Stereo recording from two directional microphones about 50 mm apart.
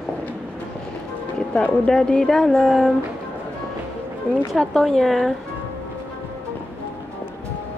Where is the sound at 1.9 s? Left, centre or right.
Centre.